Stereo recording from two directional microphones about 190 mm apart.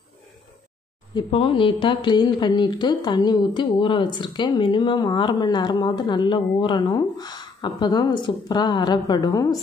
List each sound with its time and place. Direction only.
1.1 s speech: 25° left (ahead or behind)